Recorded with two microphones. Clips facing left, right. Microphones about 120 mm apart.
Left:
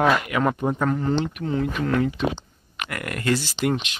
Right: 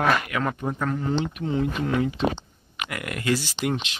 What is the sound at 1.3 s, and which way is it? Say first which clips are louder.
Speech: left 1 dB; 20° right (ahead or behind).